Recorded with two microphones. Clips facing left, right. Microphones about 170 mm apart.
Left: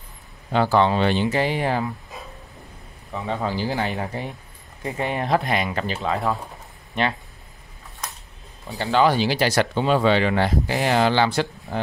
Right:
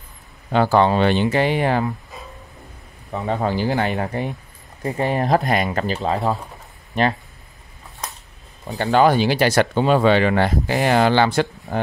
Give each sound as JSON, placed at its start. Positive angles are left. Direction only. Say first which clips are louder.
{"t": 0.5, "sound": "speech", "louder": "right 3 dB", "side_deg": -50}
{"t": 3.2, "sound": "speech", "louder": "right 4 dB", "side_deg": -50}
{"t": 4.8, "sound": "speech", "louder": "right 4 dB", "side_deg": -40}
{"t": 8.7, "sound": "speech", "louder": "right 3 dB", "side_deg": -55}